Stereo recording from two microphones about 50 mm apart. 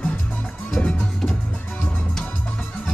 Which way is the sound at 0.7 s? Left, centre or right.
Left.